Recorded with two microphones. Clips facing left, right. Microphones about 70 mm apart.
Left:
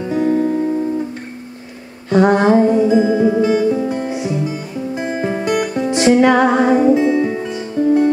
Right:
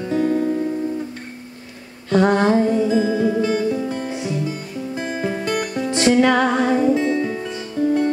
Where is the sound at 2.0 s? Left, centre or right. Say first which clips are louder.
Left 4 dB; left.